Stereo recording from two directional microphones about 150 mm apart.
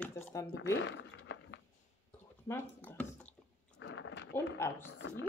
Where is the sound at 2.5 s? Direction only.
10° left (ahead or behind).